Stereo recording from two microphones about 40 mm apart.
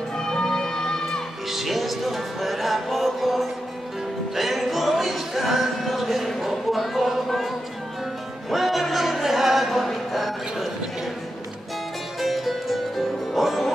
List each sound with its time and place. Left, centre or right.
0.2 s music: centre
1.5 s music: centre
12.2 s music: centre